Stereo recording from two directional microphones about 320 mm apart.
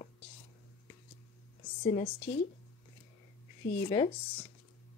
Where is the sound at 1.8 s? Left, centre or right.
Centre.